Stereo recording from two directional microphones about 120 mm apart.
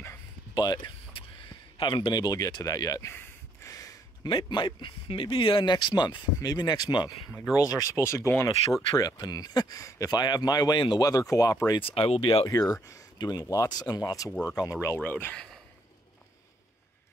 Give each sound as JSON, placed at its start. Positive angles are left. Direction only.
{"t": 0.6, "sound": "speech", "side_deg": 35}
{"t": 1.8, "sound": "a sound", "side_deg": 40}
{"t": 4.3, "sound": "speech", "side_deg": 45}
{"t": 7.5, "sound": "speech", "side_deg": 30}
{"t": 8.9, "sound": "speech", "side_deg": 35}
{"t": 11.8, "sound": "speech", "side_deg": 50}
{"t": 12.4, "sound": "speech", "side_deg": 30}
{"t": 15.0, "sound": "speech", "side_deg": 15}